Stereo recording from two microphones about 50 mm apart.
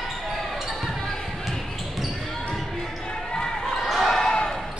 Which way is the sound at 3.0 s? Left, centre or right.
Centre.